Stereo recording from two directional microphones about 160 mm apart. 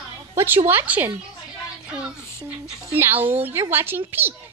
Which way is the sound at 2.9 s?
15° right (ahead or behind).